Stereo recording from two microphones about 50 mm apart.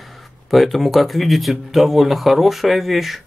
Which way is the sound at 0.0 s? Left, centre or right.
Centre.